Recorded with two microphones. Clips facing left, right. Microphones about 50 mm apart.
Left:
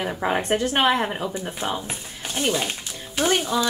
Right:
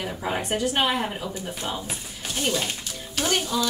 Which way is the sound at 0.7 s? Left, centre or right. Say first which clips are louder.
Left 4 dB; left.